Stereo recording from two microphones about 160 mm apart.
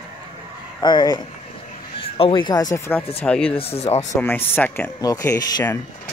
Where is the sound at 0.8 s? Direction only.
25° left (ahead or behind).